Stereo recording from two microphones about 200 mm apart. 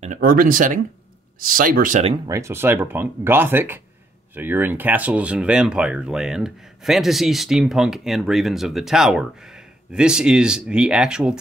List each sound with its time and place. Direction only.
0.0 s speech: 40° right (ahead or behind)
2.2 s speech: 15° right (ahead or behind)